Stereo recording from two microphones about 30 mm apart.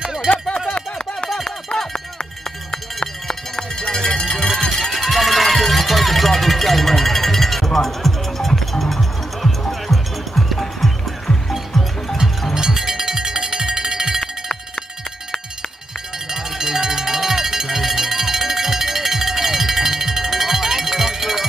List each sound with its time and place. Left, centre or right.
0.7 s a sound: left
3.0 s cowbell: centre
4.3 s cowbell: centre
4.9 s music: centre
12.7 s music: centre
16.3 s cowbell: centre